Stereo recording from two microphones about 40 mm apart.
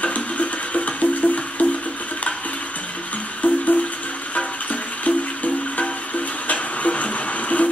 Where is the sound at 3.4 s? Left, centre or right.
Left.